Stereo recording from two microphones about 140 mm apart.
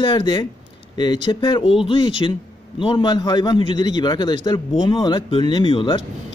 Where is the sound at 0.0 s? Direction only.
35° left (ahead or behind).